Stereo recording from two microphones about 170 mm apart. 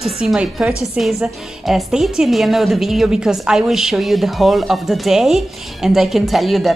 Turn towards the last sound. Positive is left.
turn(degrees=0)  # may be behind; listen again after turning